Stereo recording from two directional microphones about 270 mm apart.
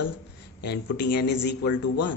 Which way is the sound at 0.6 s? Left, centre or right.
Left.